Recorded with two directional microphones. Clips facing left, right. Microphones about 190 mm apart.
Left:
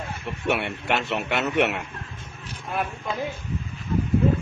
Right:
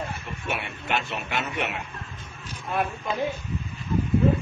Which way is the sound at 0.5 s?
70° left (ahead or behind).